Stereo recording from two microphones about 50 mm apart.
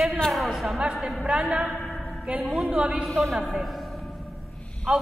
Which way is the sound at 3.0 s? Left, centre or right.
Centre.